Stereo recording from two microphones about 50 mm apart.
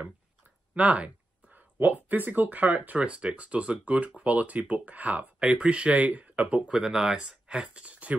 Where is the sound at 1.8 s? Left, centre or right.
Right.